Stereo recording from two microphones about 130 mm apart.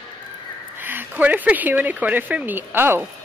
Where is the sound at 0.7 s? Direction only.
15° right (ahead or behind).